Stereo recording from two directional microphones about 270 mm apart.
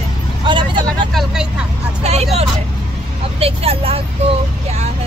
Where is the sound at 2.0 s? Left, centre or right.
Right.